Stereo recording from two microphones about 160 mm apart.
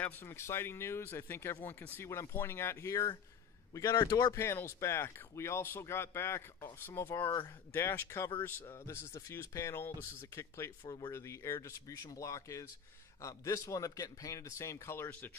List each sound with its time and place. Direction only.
0.0 s speech: 15° left (ahead or behind)